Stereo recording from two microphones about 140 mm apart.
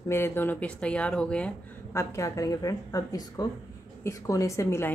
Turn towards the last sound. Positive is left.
turn(degrees=20)  # may be behind; listen again after turning